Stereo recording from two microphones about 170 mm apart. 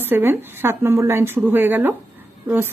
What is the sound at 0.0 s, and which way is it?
Speech, 10° right (ahead or behind).